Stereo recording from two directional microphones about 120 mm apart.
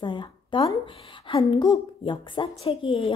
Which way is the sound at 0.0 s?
40° left (ahead or behind).